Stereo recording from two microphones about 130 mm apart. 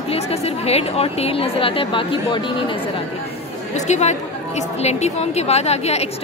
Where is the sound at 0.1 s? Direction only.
50° left (ahead or behind).